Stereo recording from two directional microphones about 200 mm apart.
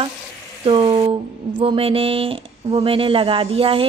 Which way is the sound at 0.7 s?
25° right (ahead or behind).